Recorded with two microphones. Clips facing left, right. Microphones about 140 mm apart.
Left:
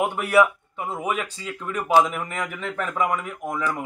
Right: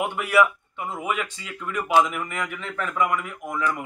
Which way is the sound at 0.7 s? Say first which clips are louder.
Left 1 dB; 35° left (ahead or behind).